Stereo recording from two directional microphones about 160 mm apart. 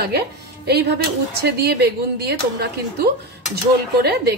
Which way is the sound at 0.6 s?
90° right.